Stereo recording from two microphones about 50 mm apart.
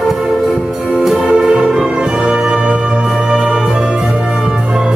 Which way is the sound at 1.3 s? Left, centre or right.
Centre.